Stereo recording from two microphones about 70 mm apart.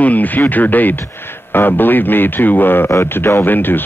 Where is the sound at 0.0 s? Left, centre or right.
Left.